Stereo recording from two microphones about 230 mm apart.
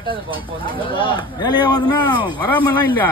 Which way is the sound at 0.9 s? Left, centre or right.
Centre.